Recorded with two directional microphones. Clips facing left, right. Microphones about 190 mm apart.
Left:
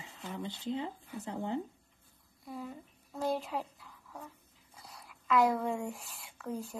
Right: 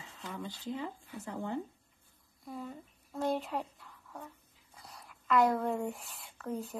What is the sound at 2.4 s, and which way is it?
Speech, centre (ahead or behind).